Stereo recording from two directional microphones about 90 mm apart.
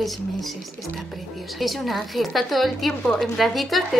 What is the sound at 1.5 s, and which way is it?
A woman's voice, centre (ahead or behind).